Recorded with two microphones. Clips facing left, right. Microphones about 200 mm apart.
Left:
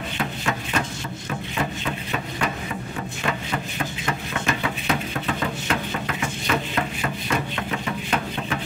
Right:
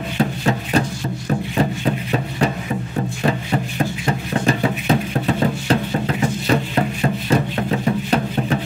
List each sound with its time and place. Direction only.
0.2 s music: 35° right (ahead or behind)
1.6 s a sound: 35° right (ahead or behind)
3.3 s music: 35° right (ahead or behind)